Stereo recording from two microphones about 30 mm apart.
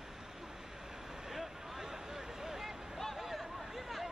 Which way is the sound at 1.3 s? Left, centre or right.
Centre.